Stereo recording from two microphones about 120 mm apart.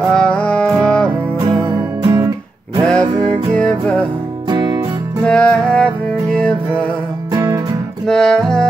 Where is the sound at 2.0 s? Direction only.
35° right (ahead or behind).